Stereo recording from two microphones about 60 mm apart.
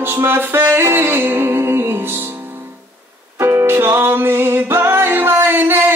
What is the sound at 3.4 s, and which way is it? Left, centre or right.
Music, right.